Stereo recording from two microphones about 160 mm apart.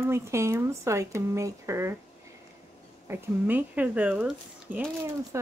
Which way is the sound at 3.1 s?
10° right (ahead or behind).